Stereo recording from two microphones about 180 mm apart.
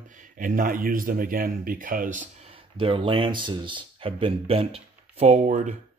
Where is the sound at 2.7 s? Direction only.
30° right (ahead or behind).